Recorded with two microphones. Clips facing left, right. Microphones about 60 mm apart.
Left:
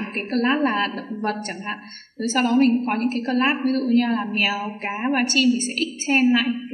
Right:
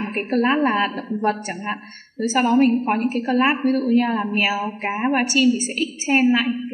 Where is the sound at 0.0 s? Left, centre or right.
Centre.